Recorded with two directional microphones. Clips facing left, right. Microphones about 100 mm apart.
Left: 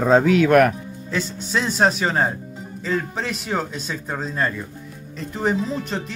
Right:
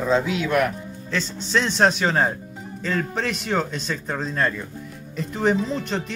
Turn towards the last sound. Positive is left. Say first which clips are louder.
# right 1 dB
turn(degrees=0)  # may be behind; listen again after turning